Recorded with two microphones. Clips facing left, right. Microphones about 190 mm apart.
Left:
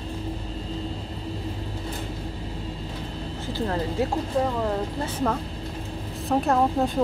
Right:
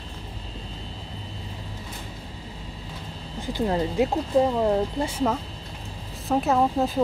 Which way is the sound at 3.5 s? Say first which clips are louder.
Right 3 dB; 15° right (ahead or behind).